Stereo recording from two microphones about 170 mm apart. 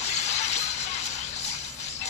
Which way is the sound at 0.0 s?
40° left (ahead or behind).